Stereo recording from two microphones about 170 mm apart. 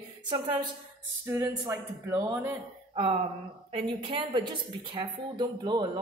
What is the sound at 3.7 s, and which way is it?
A woman's voice, 30° right (ahead or behind).